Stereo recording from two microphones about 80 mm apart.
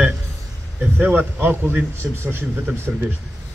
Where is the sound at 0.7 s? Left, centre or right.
Right.